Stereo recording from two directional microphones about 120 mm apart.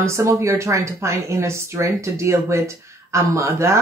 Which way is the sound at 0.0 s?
25° right (ahead or behind).